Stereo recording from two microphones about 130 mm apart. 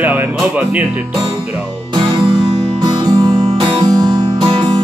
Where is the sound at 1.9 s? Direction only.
35° right (ahead or behind).